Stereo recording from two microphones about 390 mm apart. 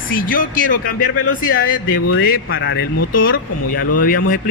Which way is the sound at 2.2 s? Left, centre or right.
Left.